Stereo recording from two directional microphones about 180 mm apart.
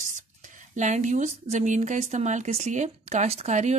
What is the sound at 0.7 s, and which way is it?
Speech, 40° right (ahead or behind).